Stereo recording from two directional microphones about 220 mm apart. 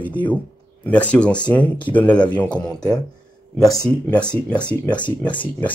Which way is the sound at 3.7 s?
15° left (ahead or behind).